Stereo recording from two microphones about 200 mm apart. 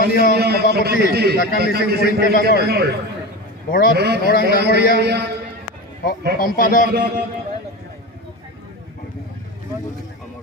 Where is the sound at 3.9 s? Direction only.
55° right (ahead or behind).